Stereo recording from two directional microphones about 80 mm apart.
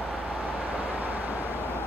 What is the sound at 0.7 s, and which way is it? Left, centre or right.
Vehicle, right.